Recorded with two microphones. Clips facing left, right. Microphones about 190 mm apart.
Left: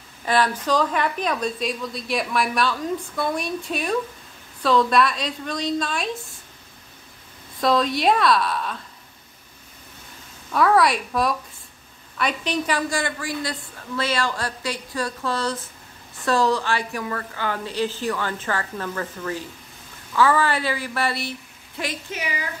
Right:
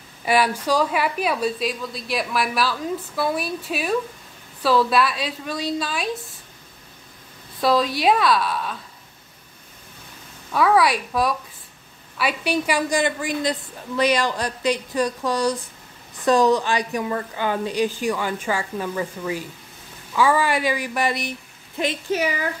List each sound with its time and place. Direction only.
0.2 s a woman's voice: 10° right (ahead or behind)
7.6 s a woman's voice: centre (ahead or behind)
10.5 s a woman's voice: centre (ahead or behind); by 21.9 s 20° right (ahead or behind)